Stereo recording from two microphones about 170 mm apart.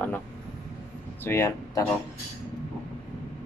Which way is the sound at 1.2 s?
15° left (ahead or behind).